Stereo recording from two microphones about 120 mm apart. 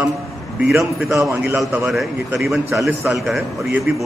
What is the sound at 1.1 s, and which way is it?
Speech, 20° right (ahead or behind).